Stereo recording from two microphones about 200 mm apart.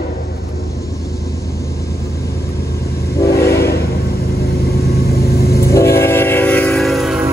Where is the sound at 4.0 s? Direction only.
50° left (ahead or behind).